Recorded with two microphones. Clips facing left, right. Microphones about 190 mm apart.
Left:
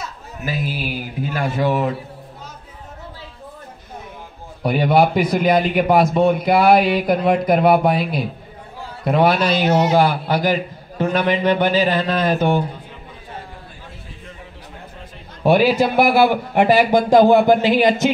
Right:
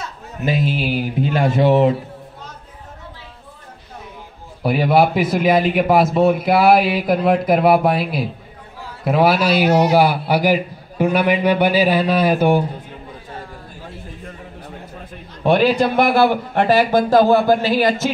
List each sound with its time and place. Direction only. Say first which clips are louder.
0.5 s a man's voice: right 5 dB; 25° right (ahead or behind)
4.6 s a man's voice: right 1 dB; centre (ahead or behind)
15.4 s speech: even; 5° left (ahead or behind)